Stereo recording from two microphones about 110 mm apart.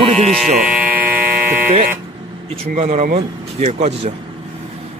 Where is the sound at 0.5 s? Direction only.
10° right (ahead or behind).